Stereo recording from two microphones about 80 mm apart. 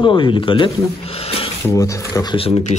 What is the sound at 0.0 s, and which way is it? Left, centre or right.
Speech, left.